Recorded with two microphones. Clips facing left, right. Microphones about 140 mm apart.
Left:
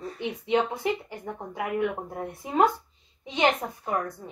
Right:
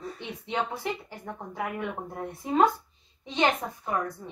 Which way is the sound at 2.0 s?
10° left (ahead or behind).